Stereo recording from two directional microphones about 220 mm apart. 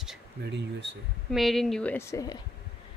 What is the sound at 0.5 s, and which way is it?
Speech, 50° right (ahead or behind).